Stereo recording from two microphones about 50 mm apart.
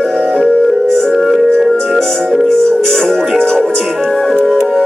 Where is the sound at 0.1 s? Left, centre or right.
Centre.